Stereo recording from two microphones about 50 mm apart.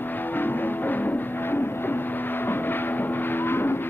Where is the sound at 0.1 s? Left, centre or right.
Left.